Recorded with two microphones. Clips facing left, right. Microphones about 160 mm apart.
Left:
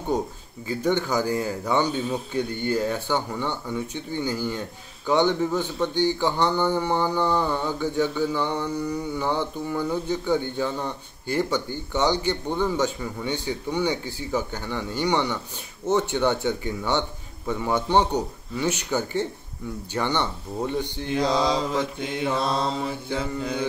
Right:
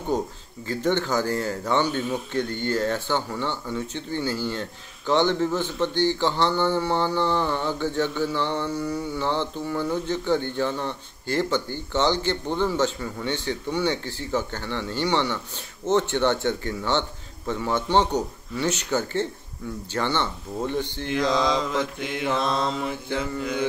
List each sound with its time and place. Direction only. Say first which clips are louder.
0.1 s speech: even; 10° left (ahead or behind)
2.0 s mantra: even; 30° left (ahead or behind)
2.3 s speech: left 1 dB; 10° left (ahead or behind)
21.1 s mantra: even; 30° left (ahead or behind)